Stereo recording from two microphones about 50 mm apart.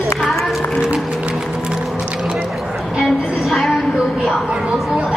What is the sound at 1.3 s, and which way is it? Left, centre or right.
Music, centre.